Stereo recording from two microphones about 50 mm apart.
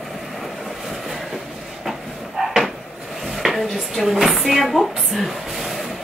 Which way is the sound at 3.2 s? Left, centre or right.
Centre.